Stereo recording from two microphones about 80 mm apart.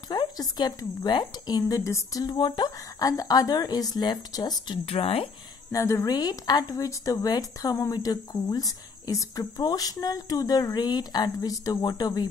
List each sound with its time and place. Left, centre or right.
0.4 s a woman's voice: left
5.0 s speech: left
5.7 s speech: left
6.0 s speech: left
7.2 s a woman's voice: left
9.4 s a woman's voice: left